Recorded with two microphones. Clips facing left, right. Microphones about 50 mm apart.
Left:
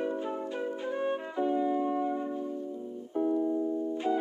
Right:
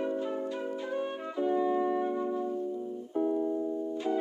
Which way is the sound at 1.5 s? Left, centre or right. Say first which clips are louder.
Right 2 dB; right.